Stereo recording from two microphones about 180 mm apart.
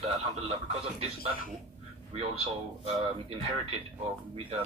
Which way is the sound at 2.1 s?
35° right (ahead or behind).